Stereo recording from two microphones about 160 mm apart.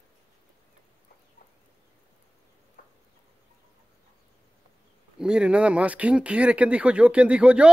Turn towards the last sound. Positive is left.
turn(degrees=-5)  # may be behind; listen again after turning